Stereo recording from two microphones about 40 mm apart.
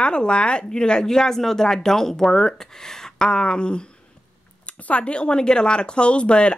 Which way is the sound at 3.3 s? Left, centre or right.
Left.